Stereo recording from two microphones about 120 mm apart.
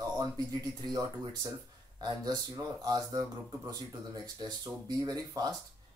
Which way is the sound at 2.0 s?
35° right (ahead or behind).